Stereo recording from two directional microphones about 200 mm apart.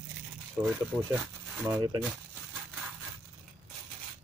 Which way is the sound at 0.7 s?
5° right (ahead or behind).